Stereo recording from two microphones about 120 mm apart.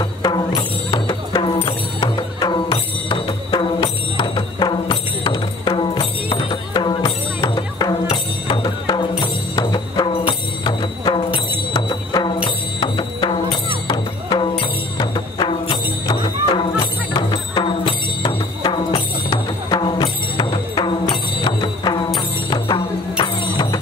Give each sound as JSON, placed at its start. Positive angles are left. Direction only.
{"t": 0.0, "sound": "music", "side_deg": 40}